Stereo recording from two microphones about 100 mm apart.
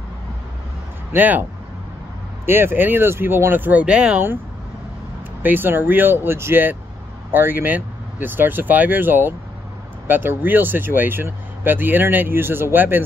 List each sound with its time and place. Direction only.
1.1 s speech: 15° right (ahead or behind)
2.4 s speech: 20° right (ahead or behind)
5.4 s speech: 20° right (ahead or behind)